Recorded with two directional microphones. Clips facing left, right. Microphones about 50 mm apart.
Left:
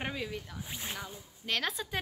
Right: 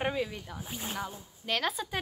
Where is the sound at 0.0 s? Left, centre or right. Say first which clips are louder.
Right 5 dB; centre.